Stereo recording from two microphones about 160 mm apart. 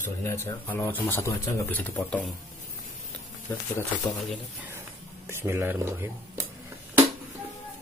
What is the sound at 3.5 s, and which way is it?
Speech, 15° left (ahead or behind).